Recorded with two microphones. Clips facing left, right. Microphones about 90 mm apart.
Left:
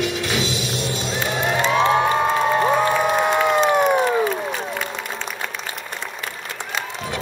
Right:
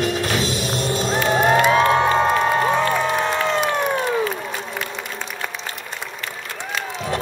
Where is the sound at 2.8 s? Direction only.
15° left (ahead or behind).